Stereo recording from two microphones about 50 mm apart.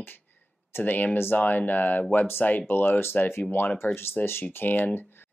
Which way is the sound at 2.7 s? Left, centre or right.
Left.